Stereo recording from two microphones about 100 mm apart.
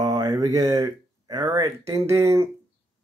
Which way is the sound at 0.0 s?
40° right (ahead or behind).